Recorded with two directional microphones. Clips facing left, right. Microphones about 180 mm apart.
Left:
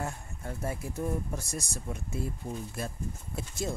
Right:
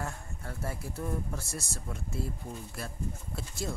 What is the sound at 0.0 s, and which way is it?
Speech, 20° left (ahead or behind).